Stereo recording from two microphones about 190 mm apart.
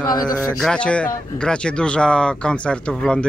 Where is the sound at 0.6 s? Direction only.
5° left (ahead or behind).